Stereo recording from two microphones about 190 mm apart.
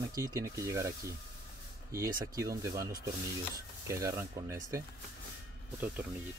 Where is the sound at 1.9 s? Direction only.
15° right (ahead or behind).